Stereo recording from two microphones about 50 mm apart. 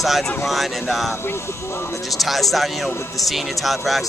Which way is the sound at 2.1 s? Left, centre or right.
Centre.